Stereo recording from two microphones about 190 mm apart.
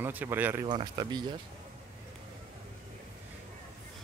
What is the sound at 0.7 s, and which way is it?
Speech, 25° right (ahead or behind).